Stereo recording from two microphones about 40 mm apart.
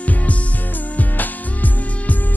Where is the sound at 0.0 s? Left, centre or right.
Left.